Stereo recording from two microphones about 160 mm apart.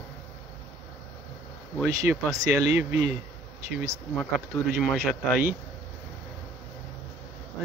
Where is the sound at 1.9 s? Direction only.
20° right (ahead or behind).